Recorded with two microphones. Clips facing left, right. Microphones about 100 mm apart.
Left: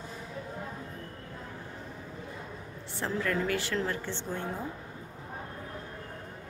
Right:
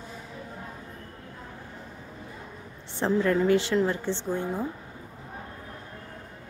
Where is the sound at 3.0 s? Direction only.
25° right (ahead or behind).